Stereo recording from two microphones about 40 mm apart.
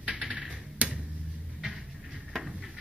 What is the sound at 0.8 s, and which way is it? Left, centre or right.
Finger snapping, right.